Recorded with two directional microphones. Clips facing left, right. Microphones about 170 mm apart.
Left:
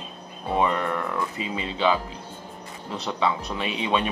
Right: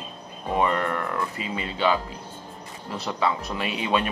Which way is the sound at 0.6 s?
Centre (ahead or behind).